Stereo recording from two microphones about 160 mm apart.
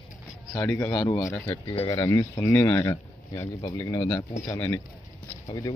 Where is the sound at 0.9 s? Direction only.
30° left (ahead or behind).